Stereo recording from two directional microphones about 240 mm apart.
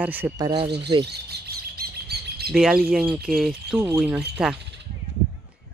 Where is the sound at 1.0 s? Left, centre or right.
Right.